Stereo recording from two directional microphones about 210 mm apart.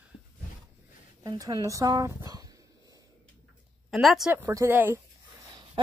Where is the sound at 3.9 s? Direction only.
Centre (ahead or behind).